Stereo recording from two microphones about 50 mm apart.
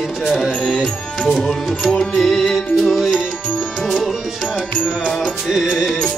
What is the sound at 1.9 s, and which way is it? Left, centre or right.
Music, centre.